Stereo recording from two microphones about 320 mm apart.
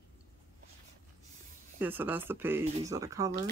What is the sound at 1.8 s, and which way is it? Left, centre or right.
Speech, centre.